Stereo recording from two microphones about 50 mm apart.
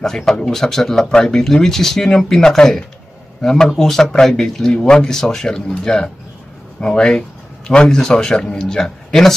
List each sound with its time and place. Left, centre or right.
0.0 s a man's voice: centre